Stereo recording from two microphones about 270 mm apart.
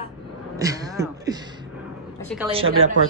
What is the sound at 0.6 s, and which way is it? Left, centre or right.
Speech, centre.